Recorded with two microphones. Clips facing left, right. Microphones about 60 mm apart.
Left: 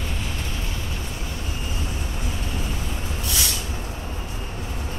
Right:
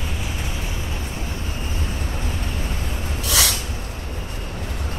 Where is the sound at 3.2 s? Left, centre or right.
Right.